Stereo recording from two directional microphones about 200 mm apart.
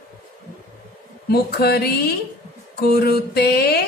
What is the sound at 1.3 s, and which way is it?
Speech, 55° left (ahead or behind).